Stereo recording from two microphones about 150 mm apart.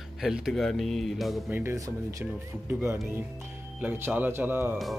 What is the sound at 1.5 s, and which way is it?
Speech, 15° right (ahead or behind).